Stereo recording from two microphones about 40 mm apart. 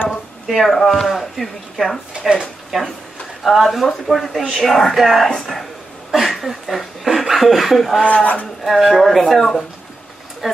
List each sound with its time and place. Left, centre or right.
0.1 s speech: centre
2.1 s speech: right
2.4 s a sound: centre
3.4 s speech: centre
6.3 s speech: centre
8.0 s a man's voice: left
8.6 s speech: centre